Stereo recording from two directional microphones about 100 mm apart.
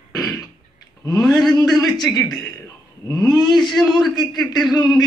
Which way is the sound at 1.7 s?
45° left (ahead or behind).